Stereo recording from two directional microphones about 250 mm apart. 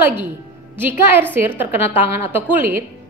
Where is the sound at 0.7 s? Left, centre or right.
Centre.